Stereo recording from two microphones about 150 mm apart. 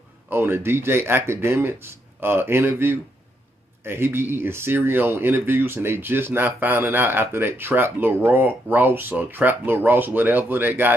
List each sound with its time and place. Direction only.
0.3 s speech: 15° right (ahead or behind)